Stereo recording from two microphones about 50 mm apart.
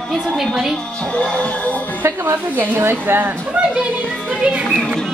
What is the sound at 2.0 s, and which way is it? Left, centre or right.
Speech, right.